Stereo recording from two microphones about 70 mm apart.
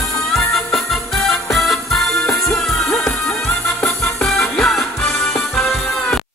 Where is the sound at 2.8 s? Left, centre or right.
Left.